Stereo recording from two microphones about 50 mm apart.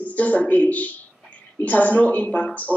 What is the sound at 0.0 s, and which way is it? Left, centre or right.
Speech, left.